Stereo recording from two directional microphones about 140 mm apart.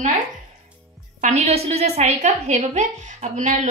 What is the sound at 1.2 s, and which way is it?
A woman's voice, 50° right (ahead or behind).